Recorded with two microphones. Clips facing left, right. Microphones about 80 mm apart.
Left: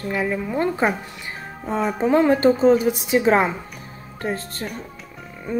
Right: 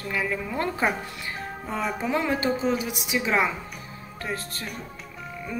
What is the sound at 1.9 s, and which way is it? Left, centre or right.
A woman's voice, left.